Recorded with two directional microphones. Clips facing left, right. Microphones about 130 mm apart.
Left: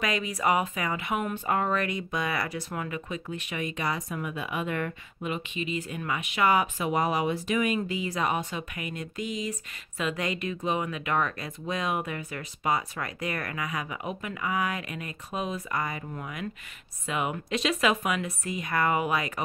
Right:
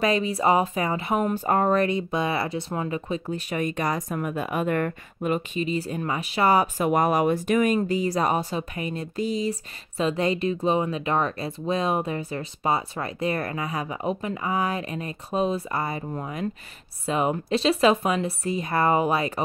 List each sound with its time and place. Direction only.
0.0 s speech: 30° right (ahead or behind)
6.8 s speech: 50° right (ahead or behind); by 19.4 s 30° right (ahead or behind)